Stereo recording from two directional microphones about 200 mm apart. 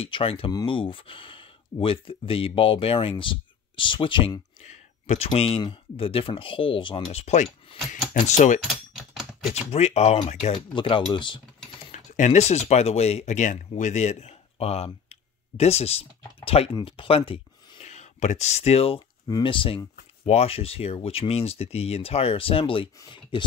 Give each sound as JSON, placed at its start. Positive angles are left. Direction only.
{"t": 0.0, "sound": "speech", "side_deg": 30}
{"t": 8.6, "sound": "typing", "side_deg": 0}
{"t": 9.5, "sound": "speech", "side_deg": 35}
{"t": 11.9, "sound": "speech", "side_deg": 35}